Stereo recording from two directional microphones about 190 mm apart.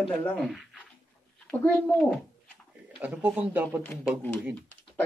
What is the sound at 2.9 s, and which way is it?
Speech, 5° right (ahead or behind).